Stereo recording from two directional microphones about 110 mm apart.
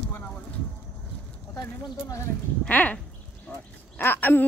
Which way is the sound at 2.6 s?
15° left (ahead or behind).